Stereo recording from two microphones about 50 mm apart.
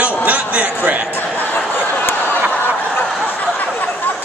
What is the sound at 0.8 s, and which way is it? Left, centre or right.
Speech, right.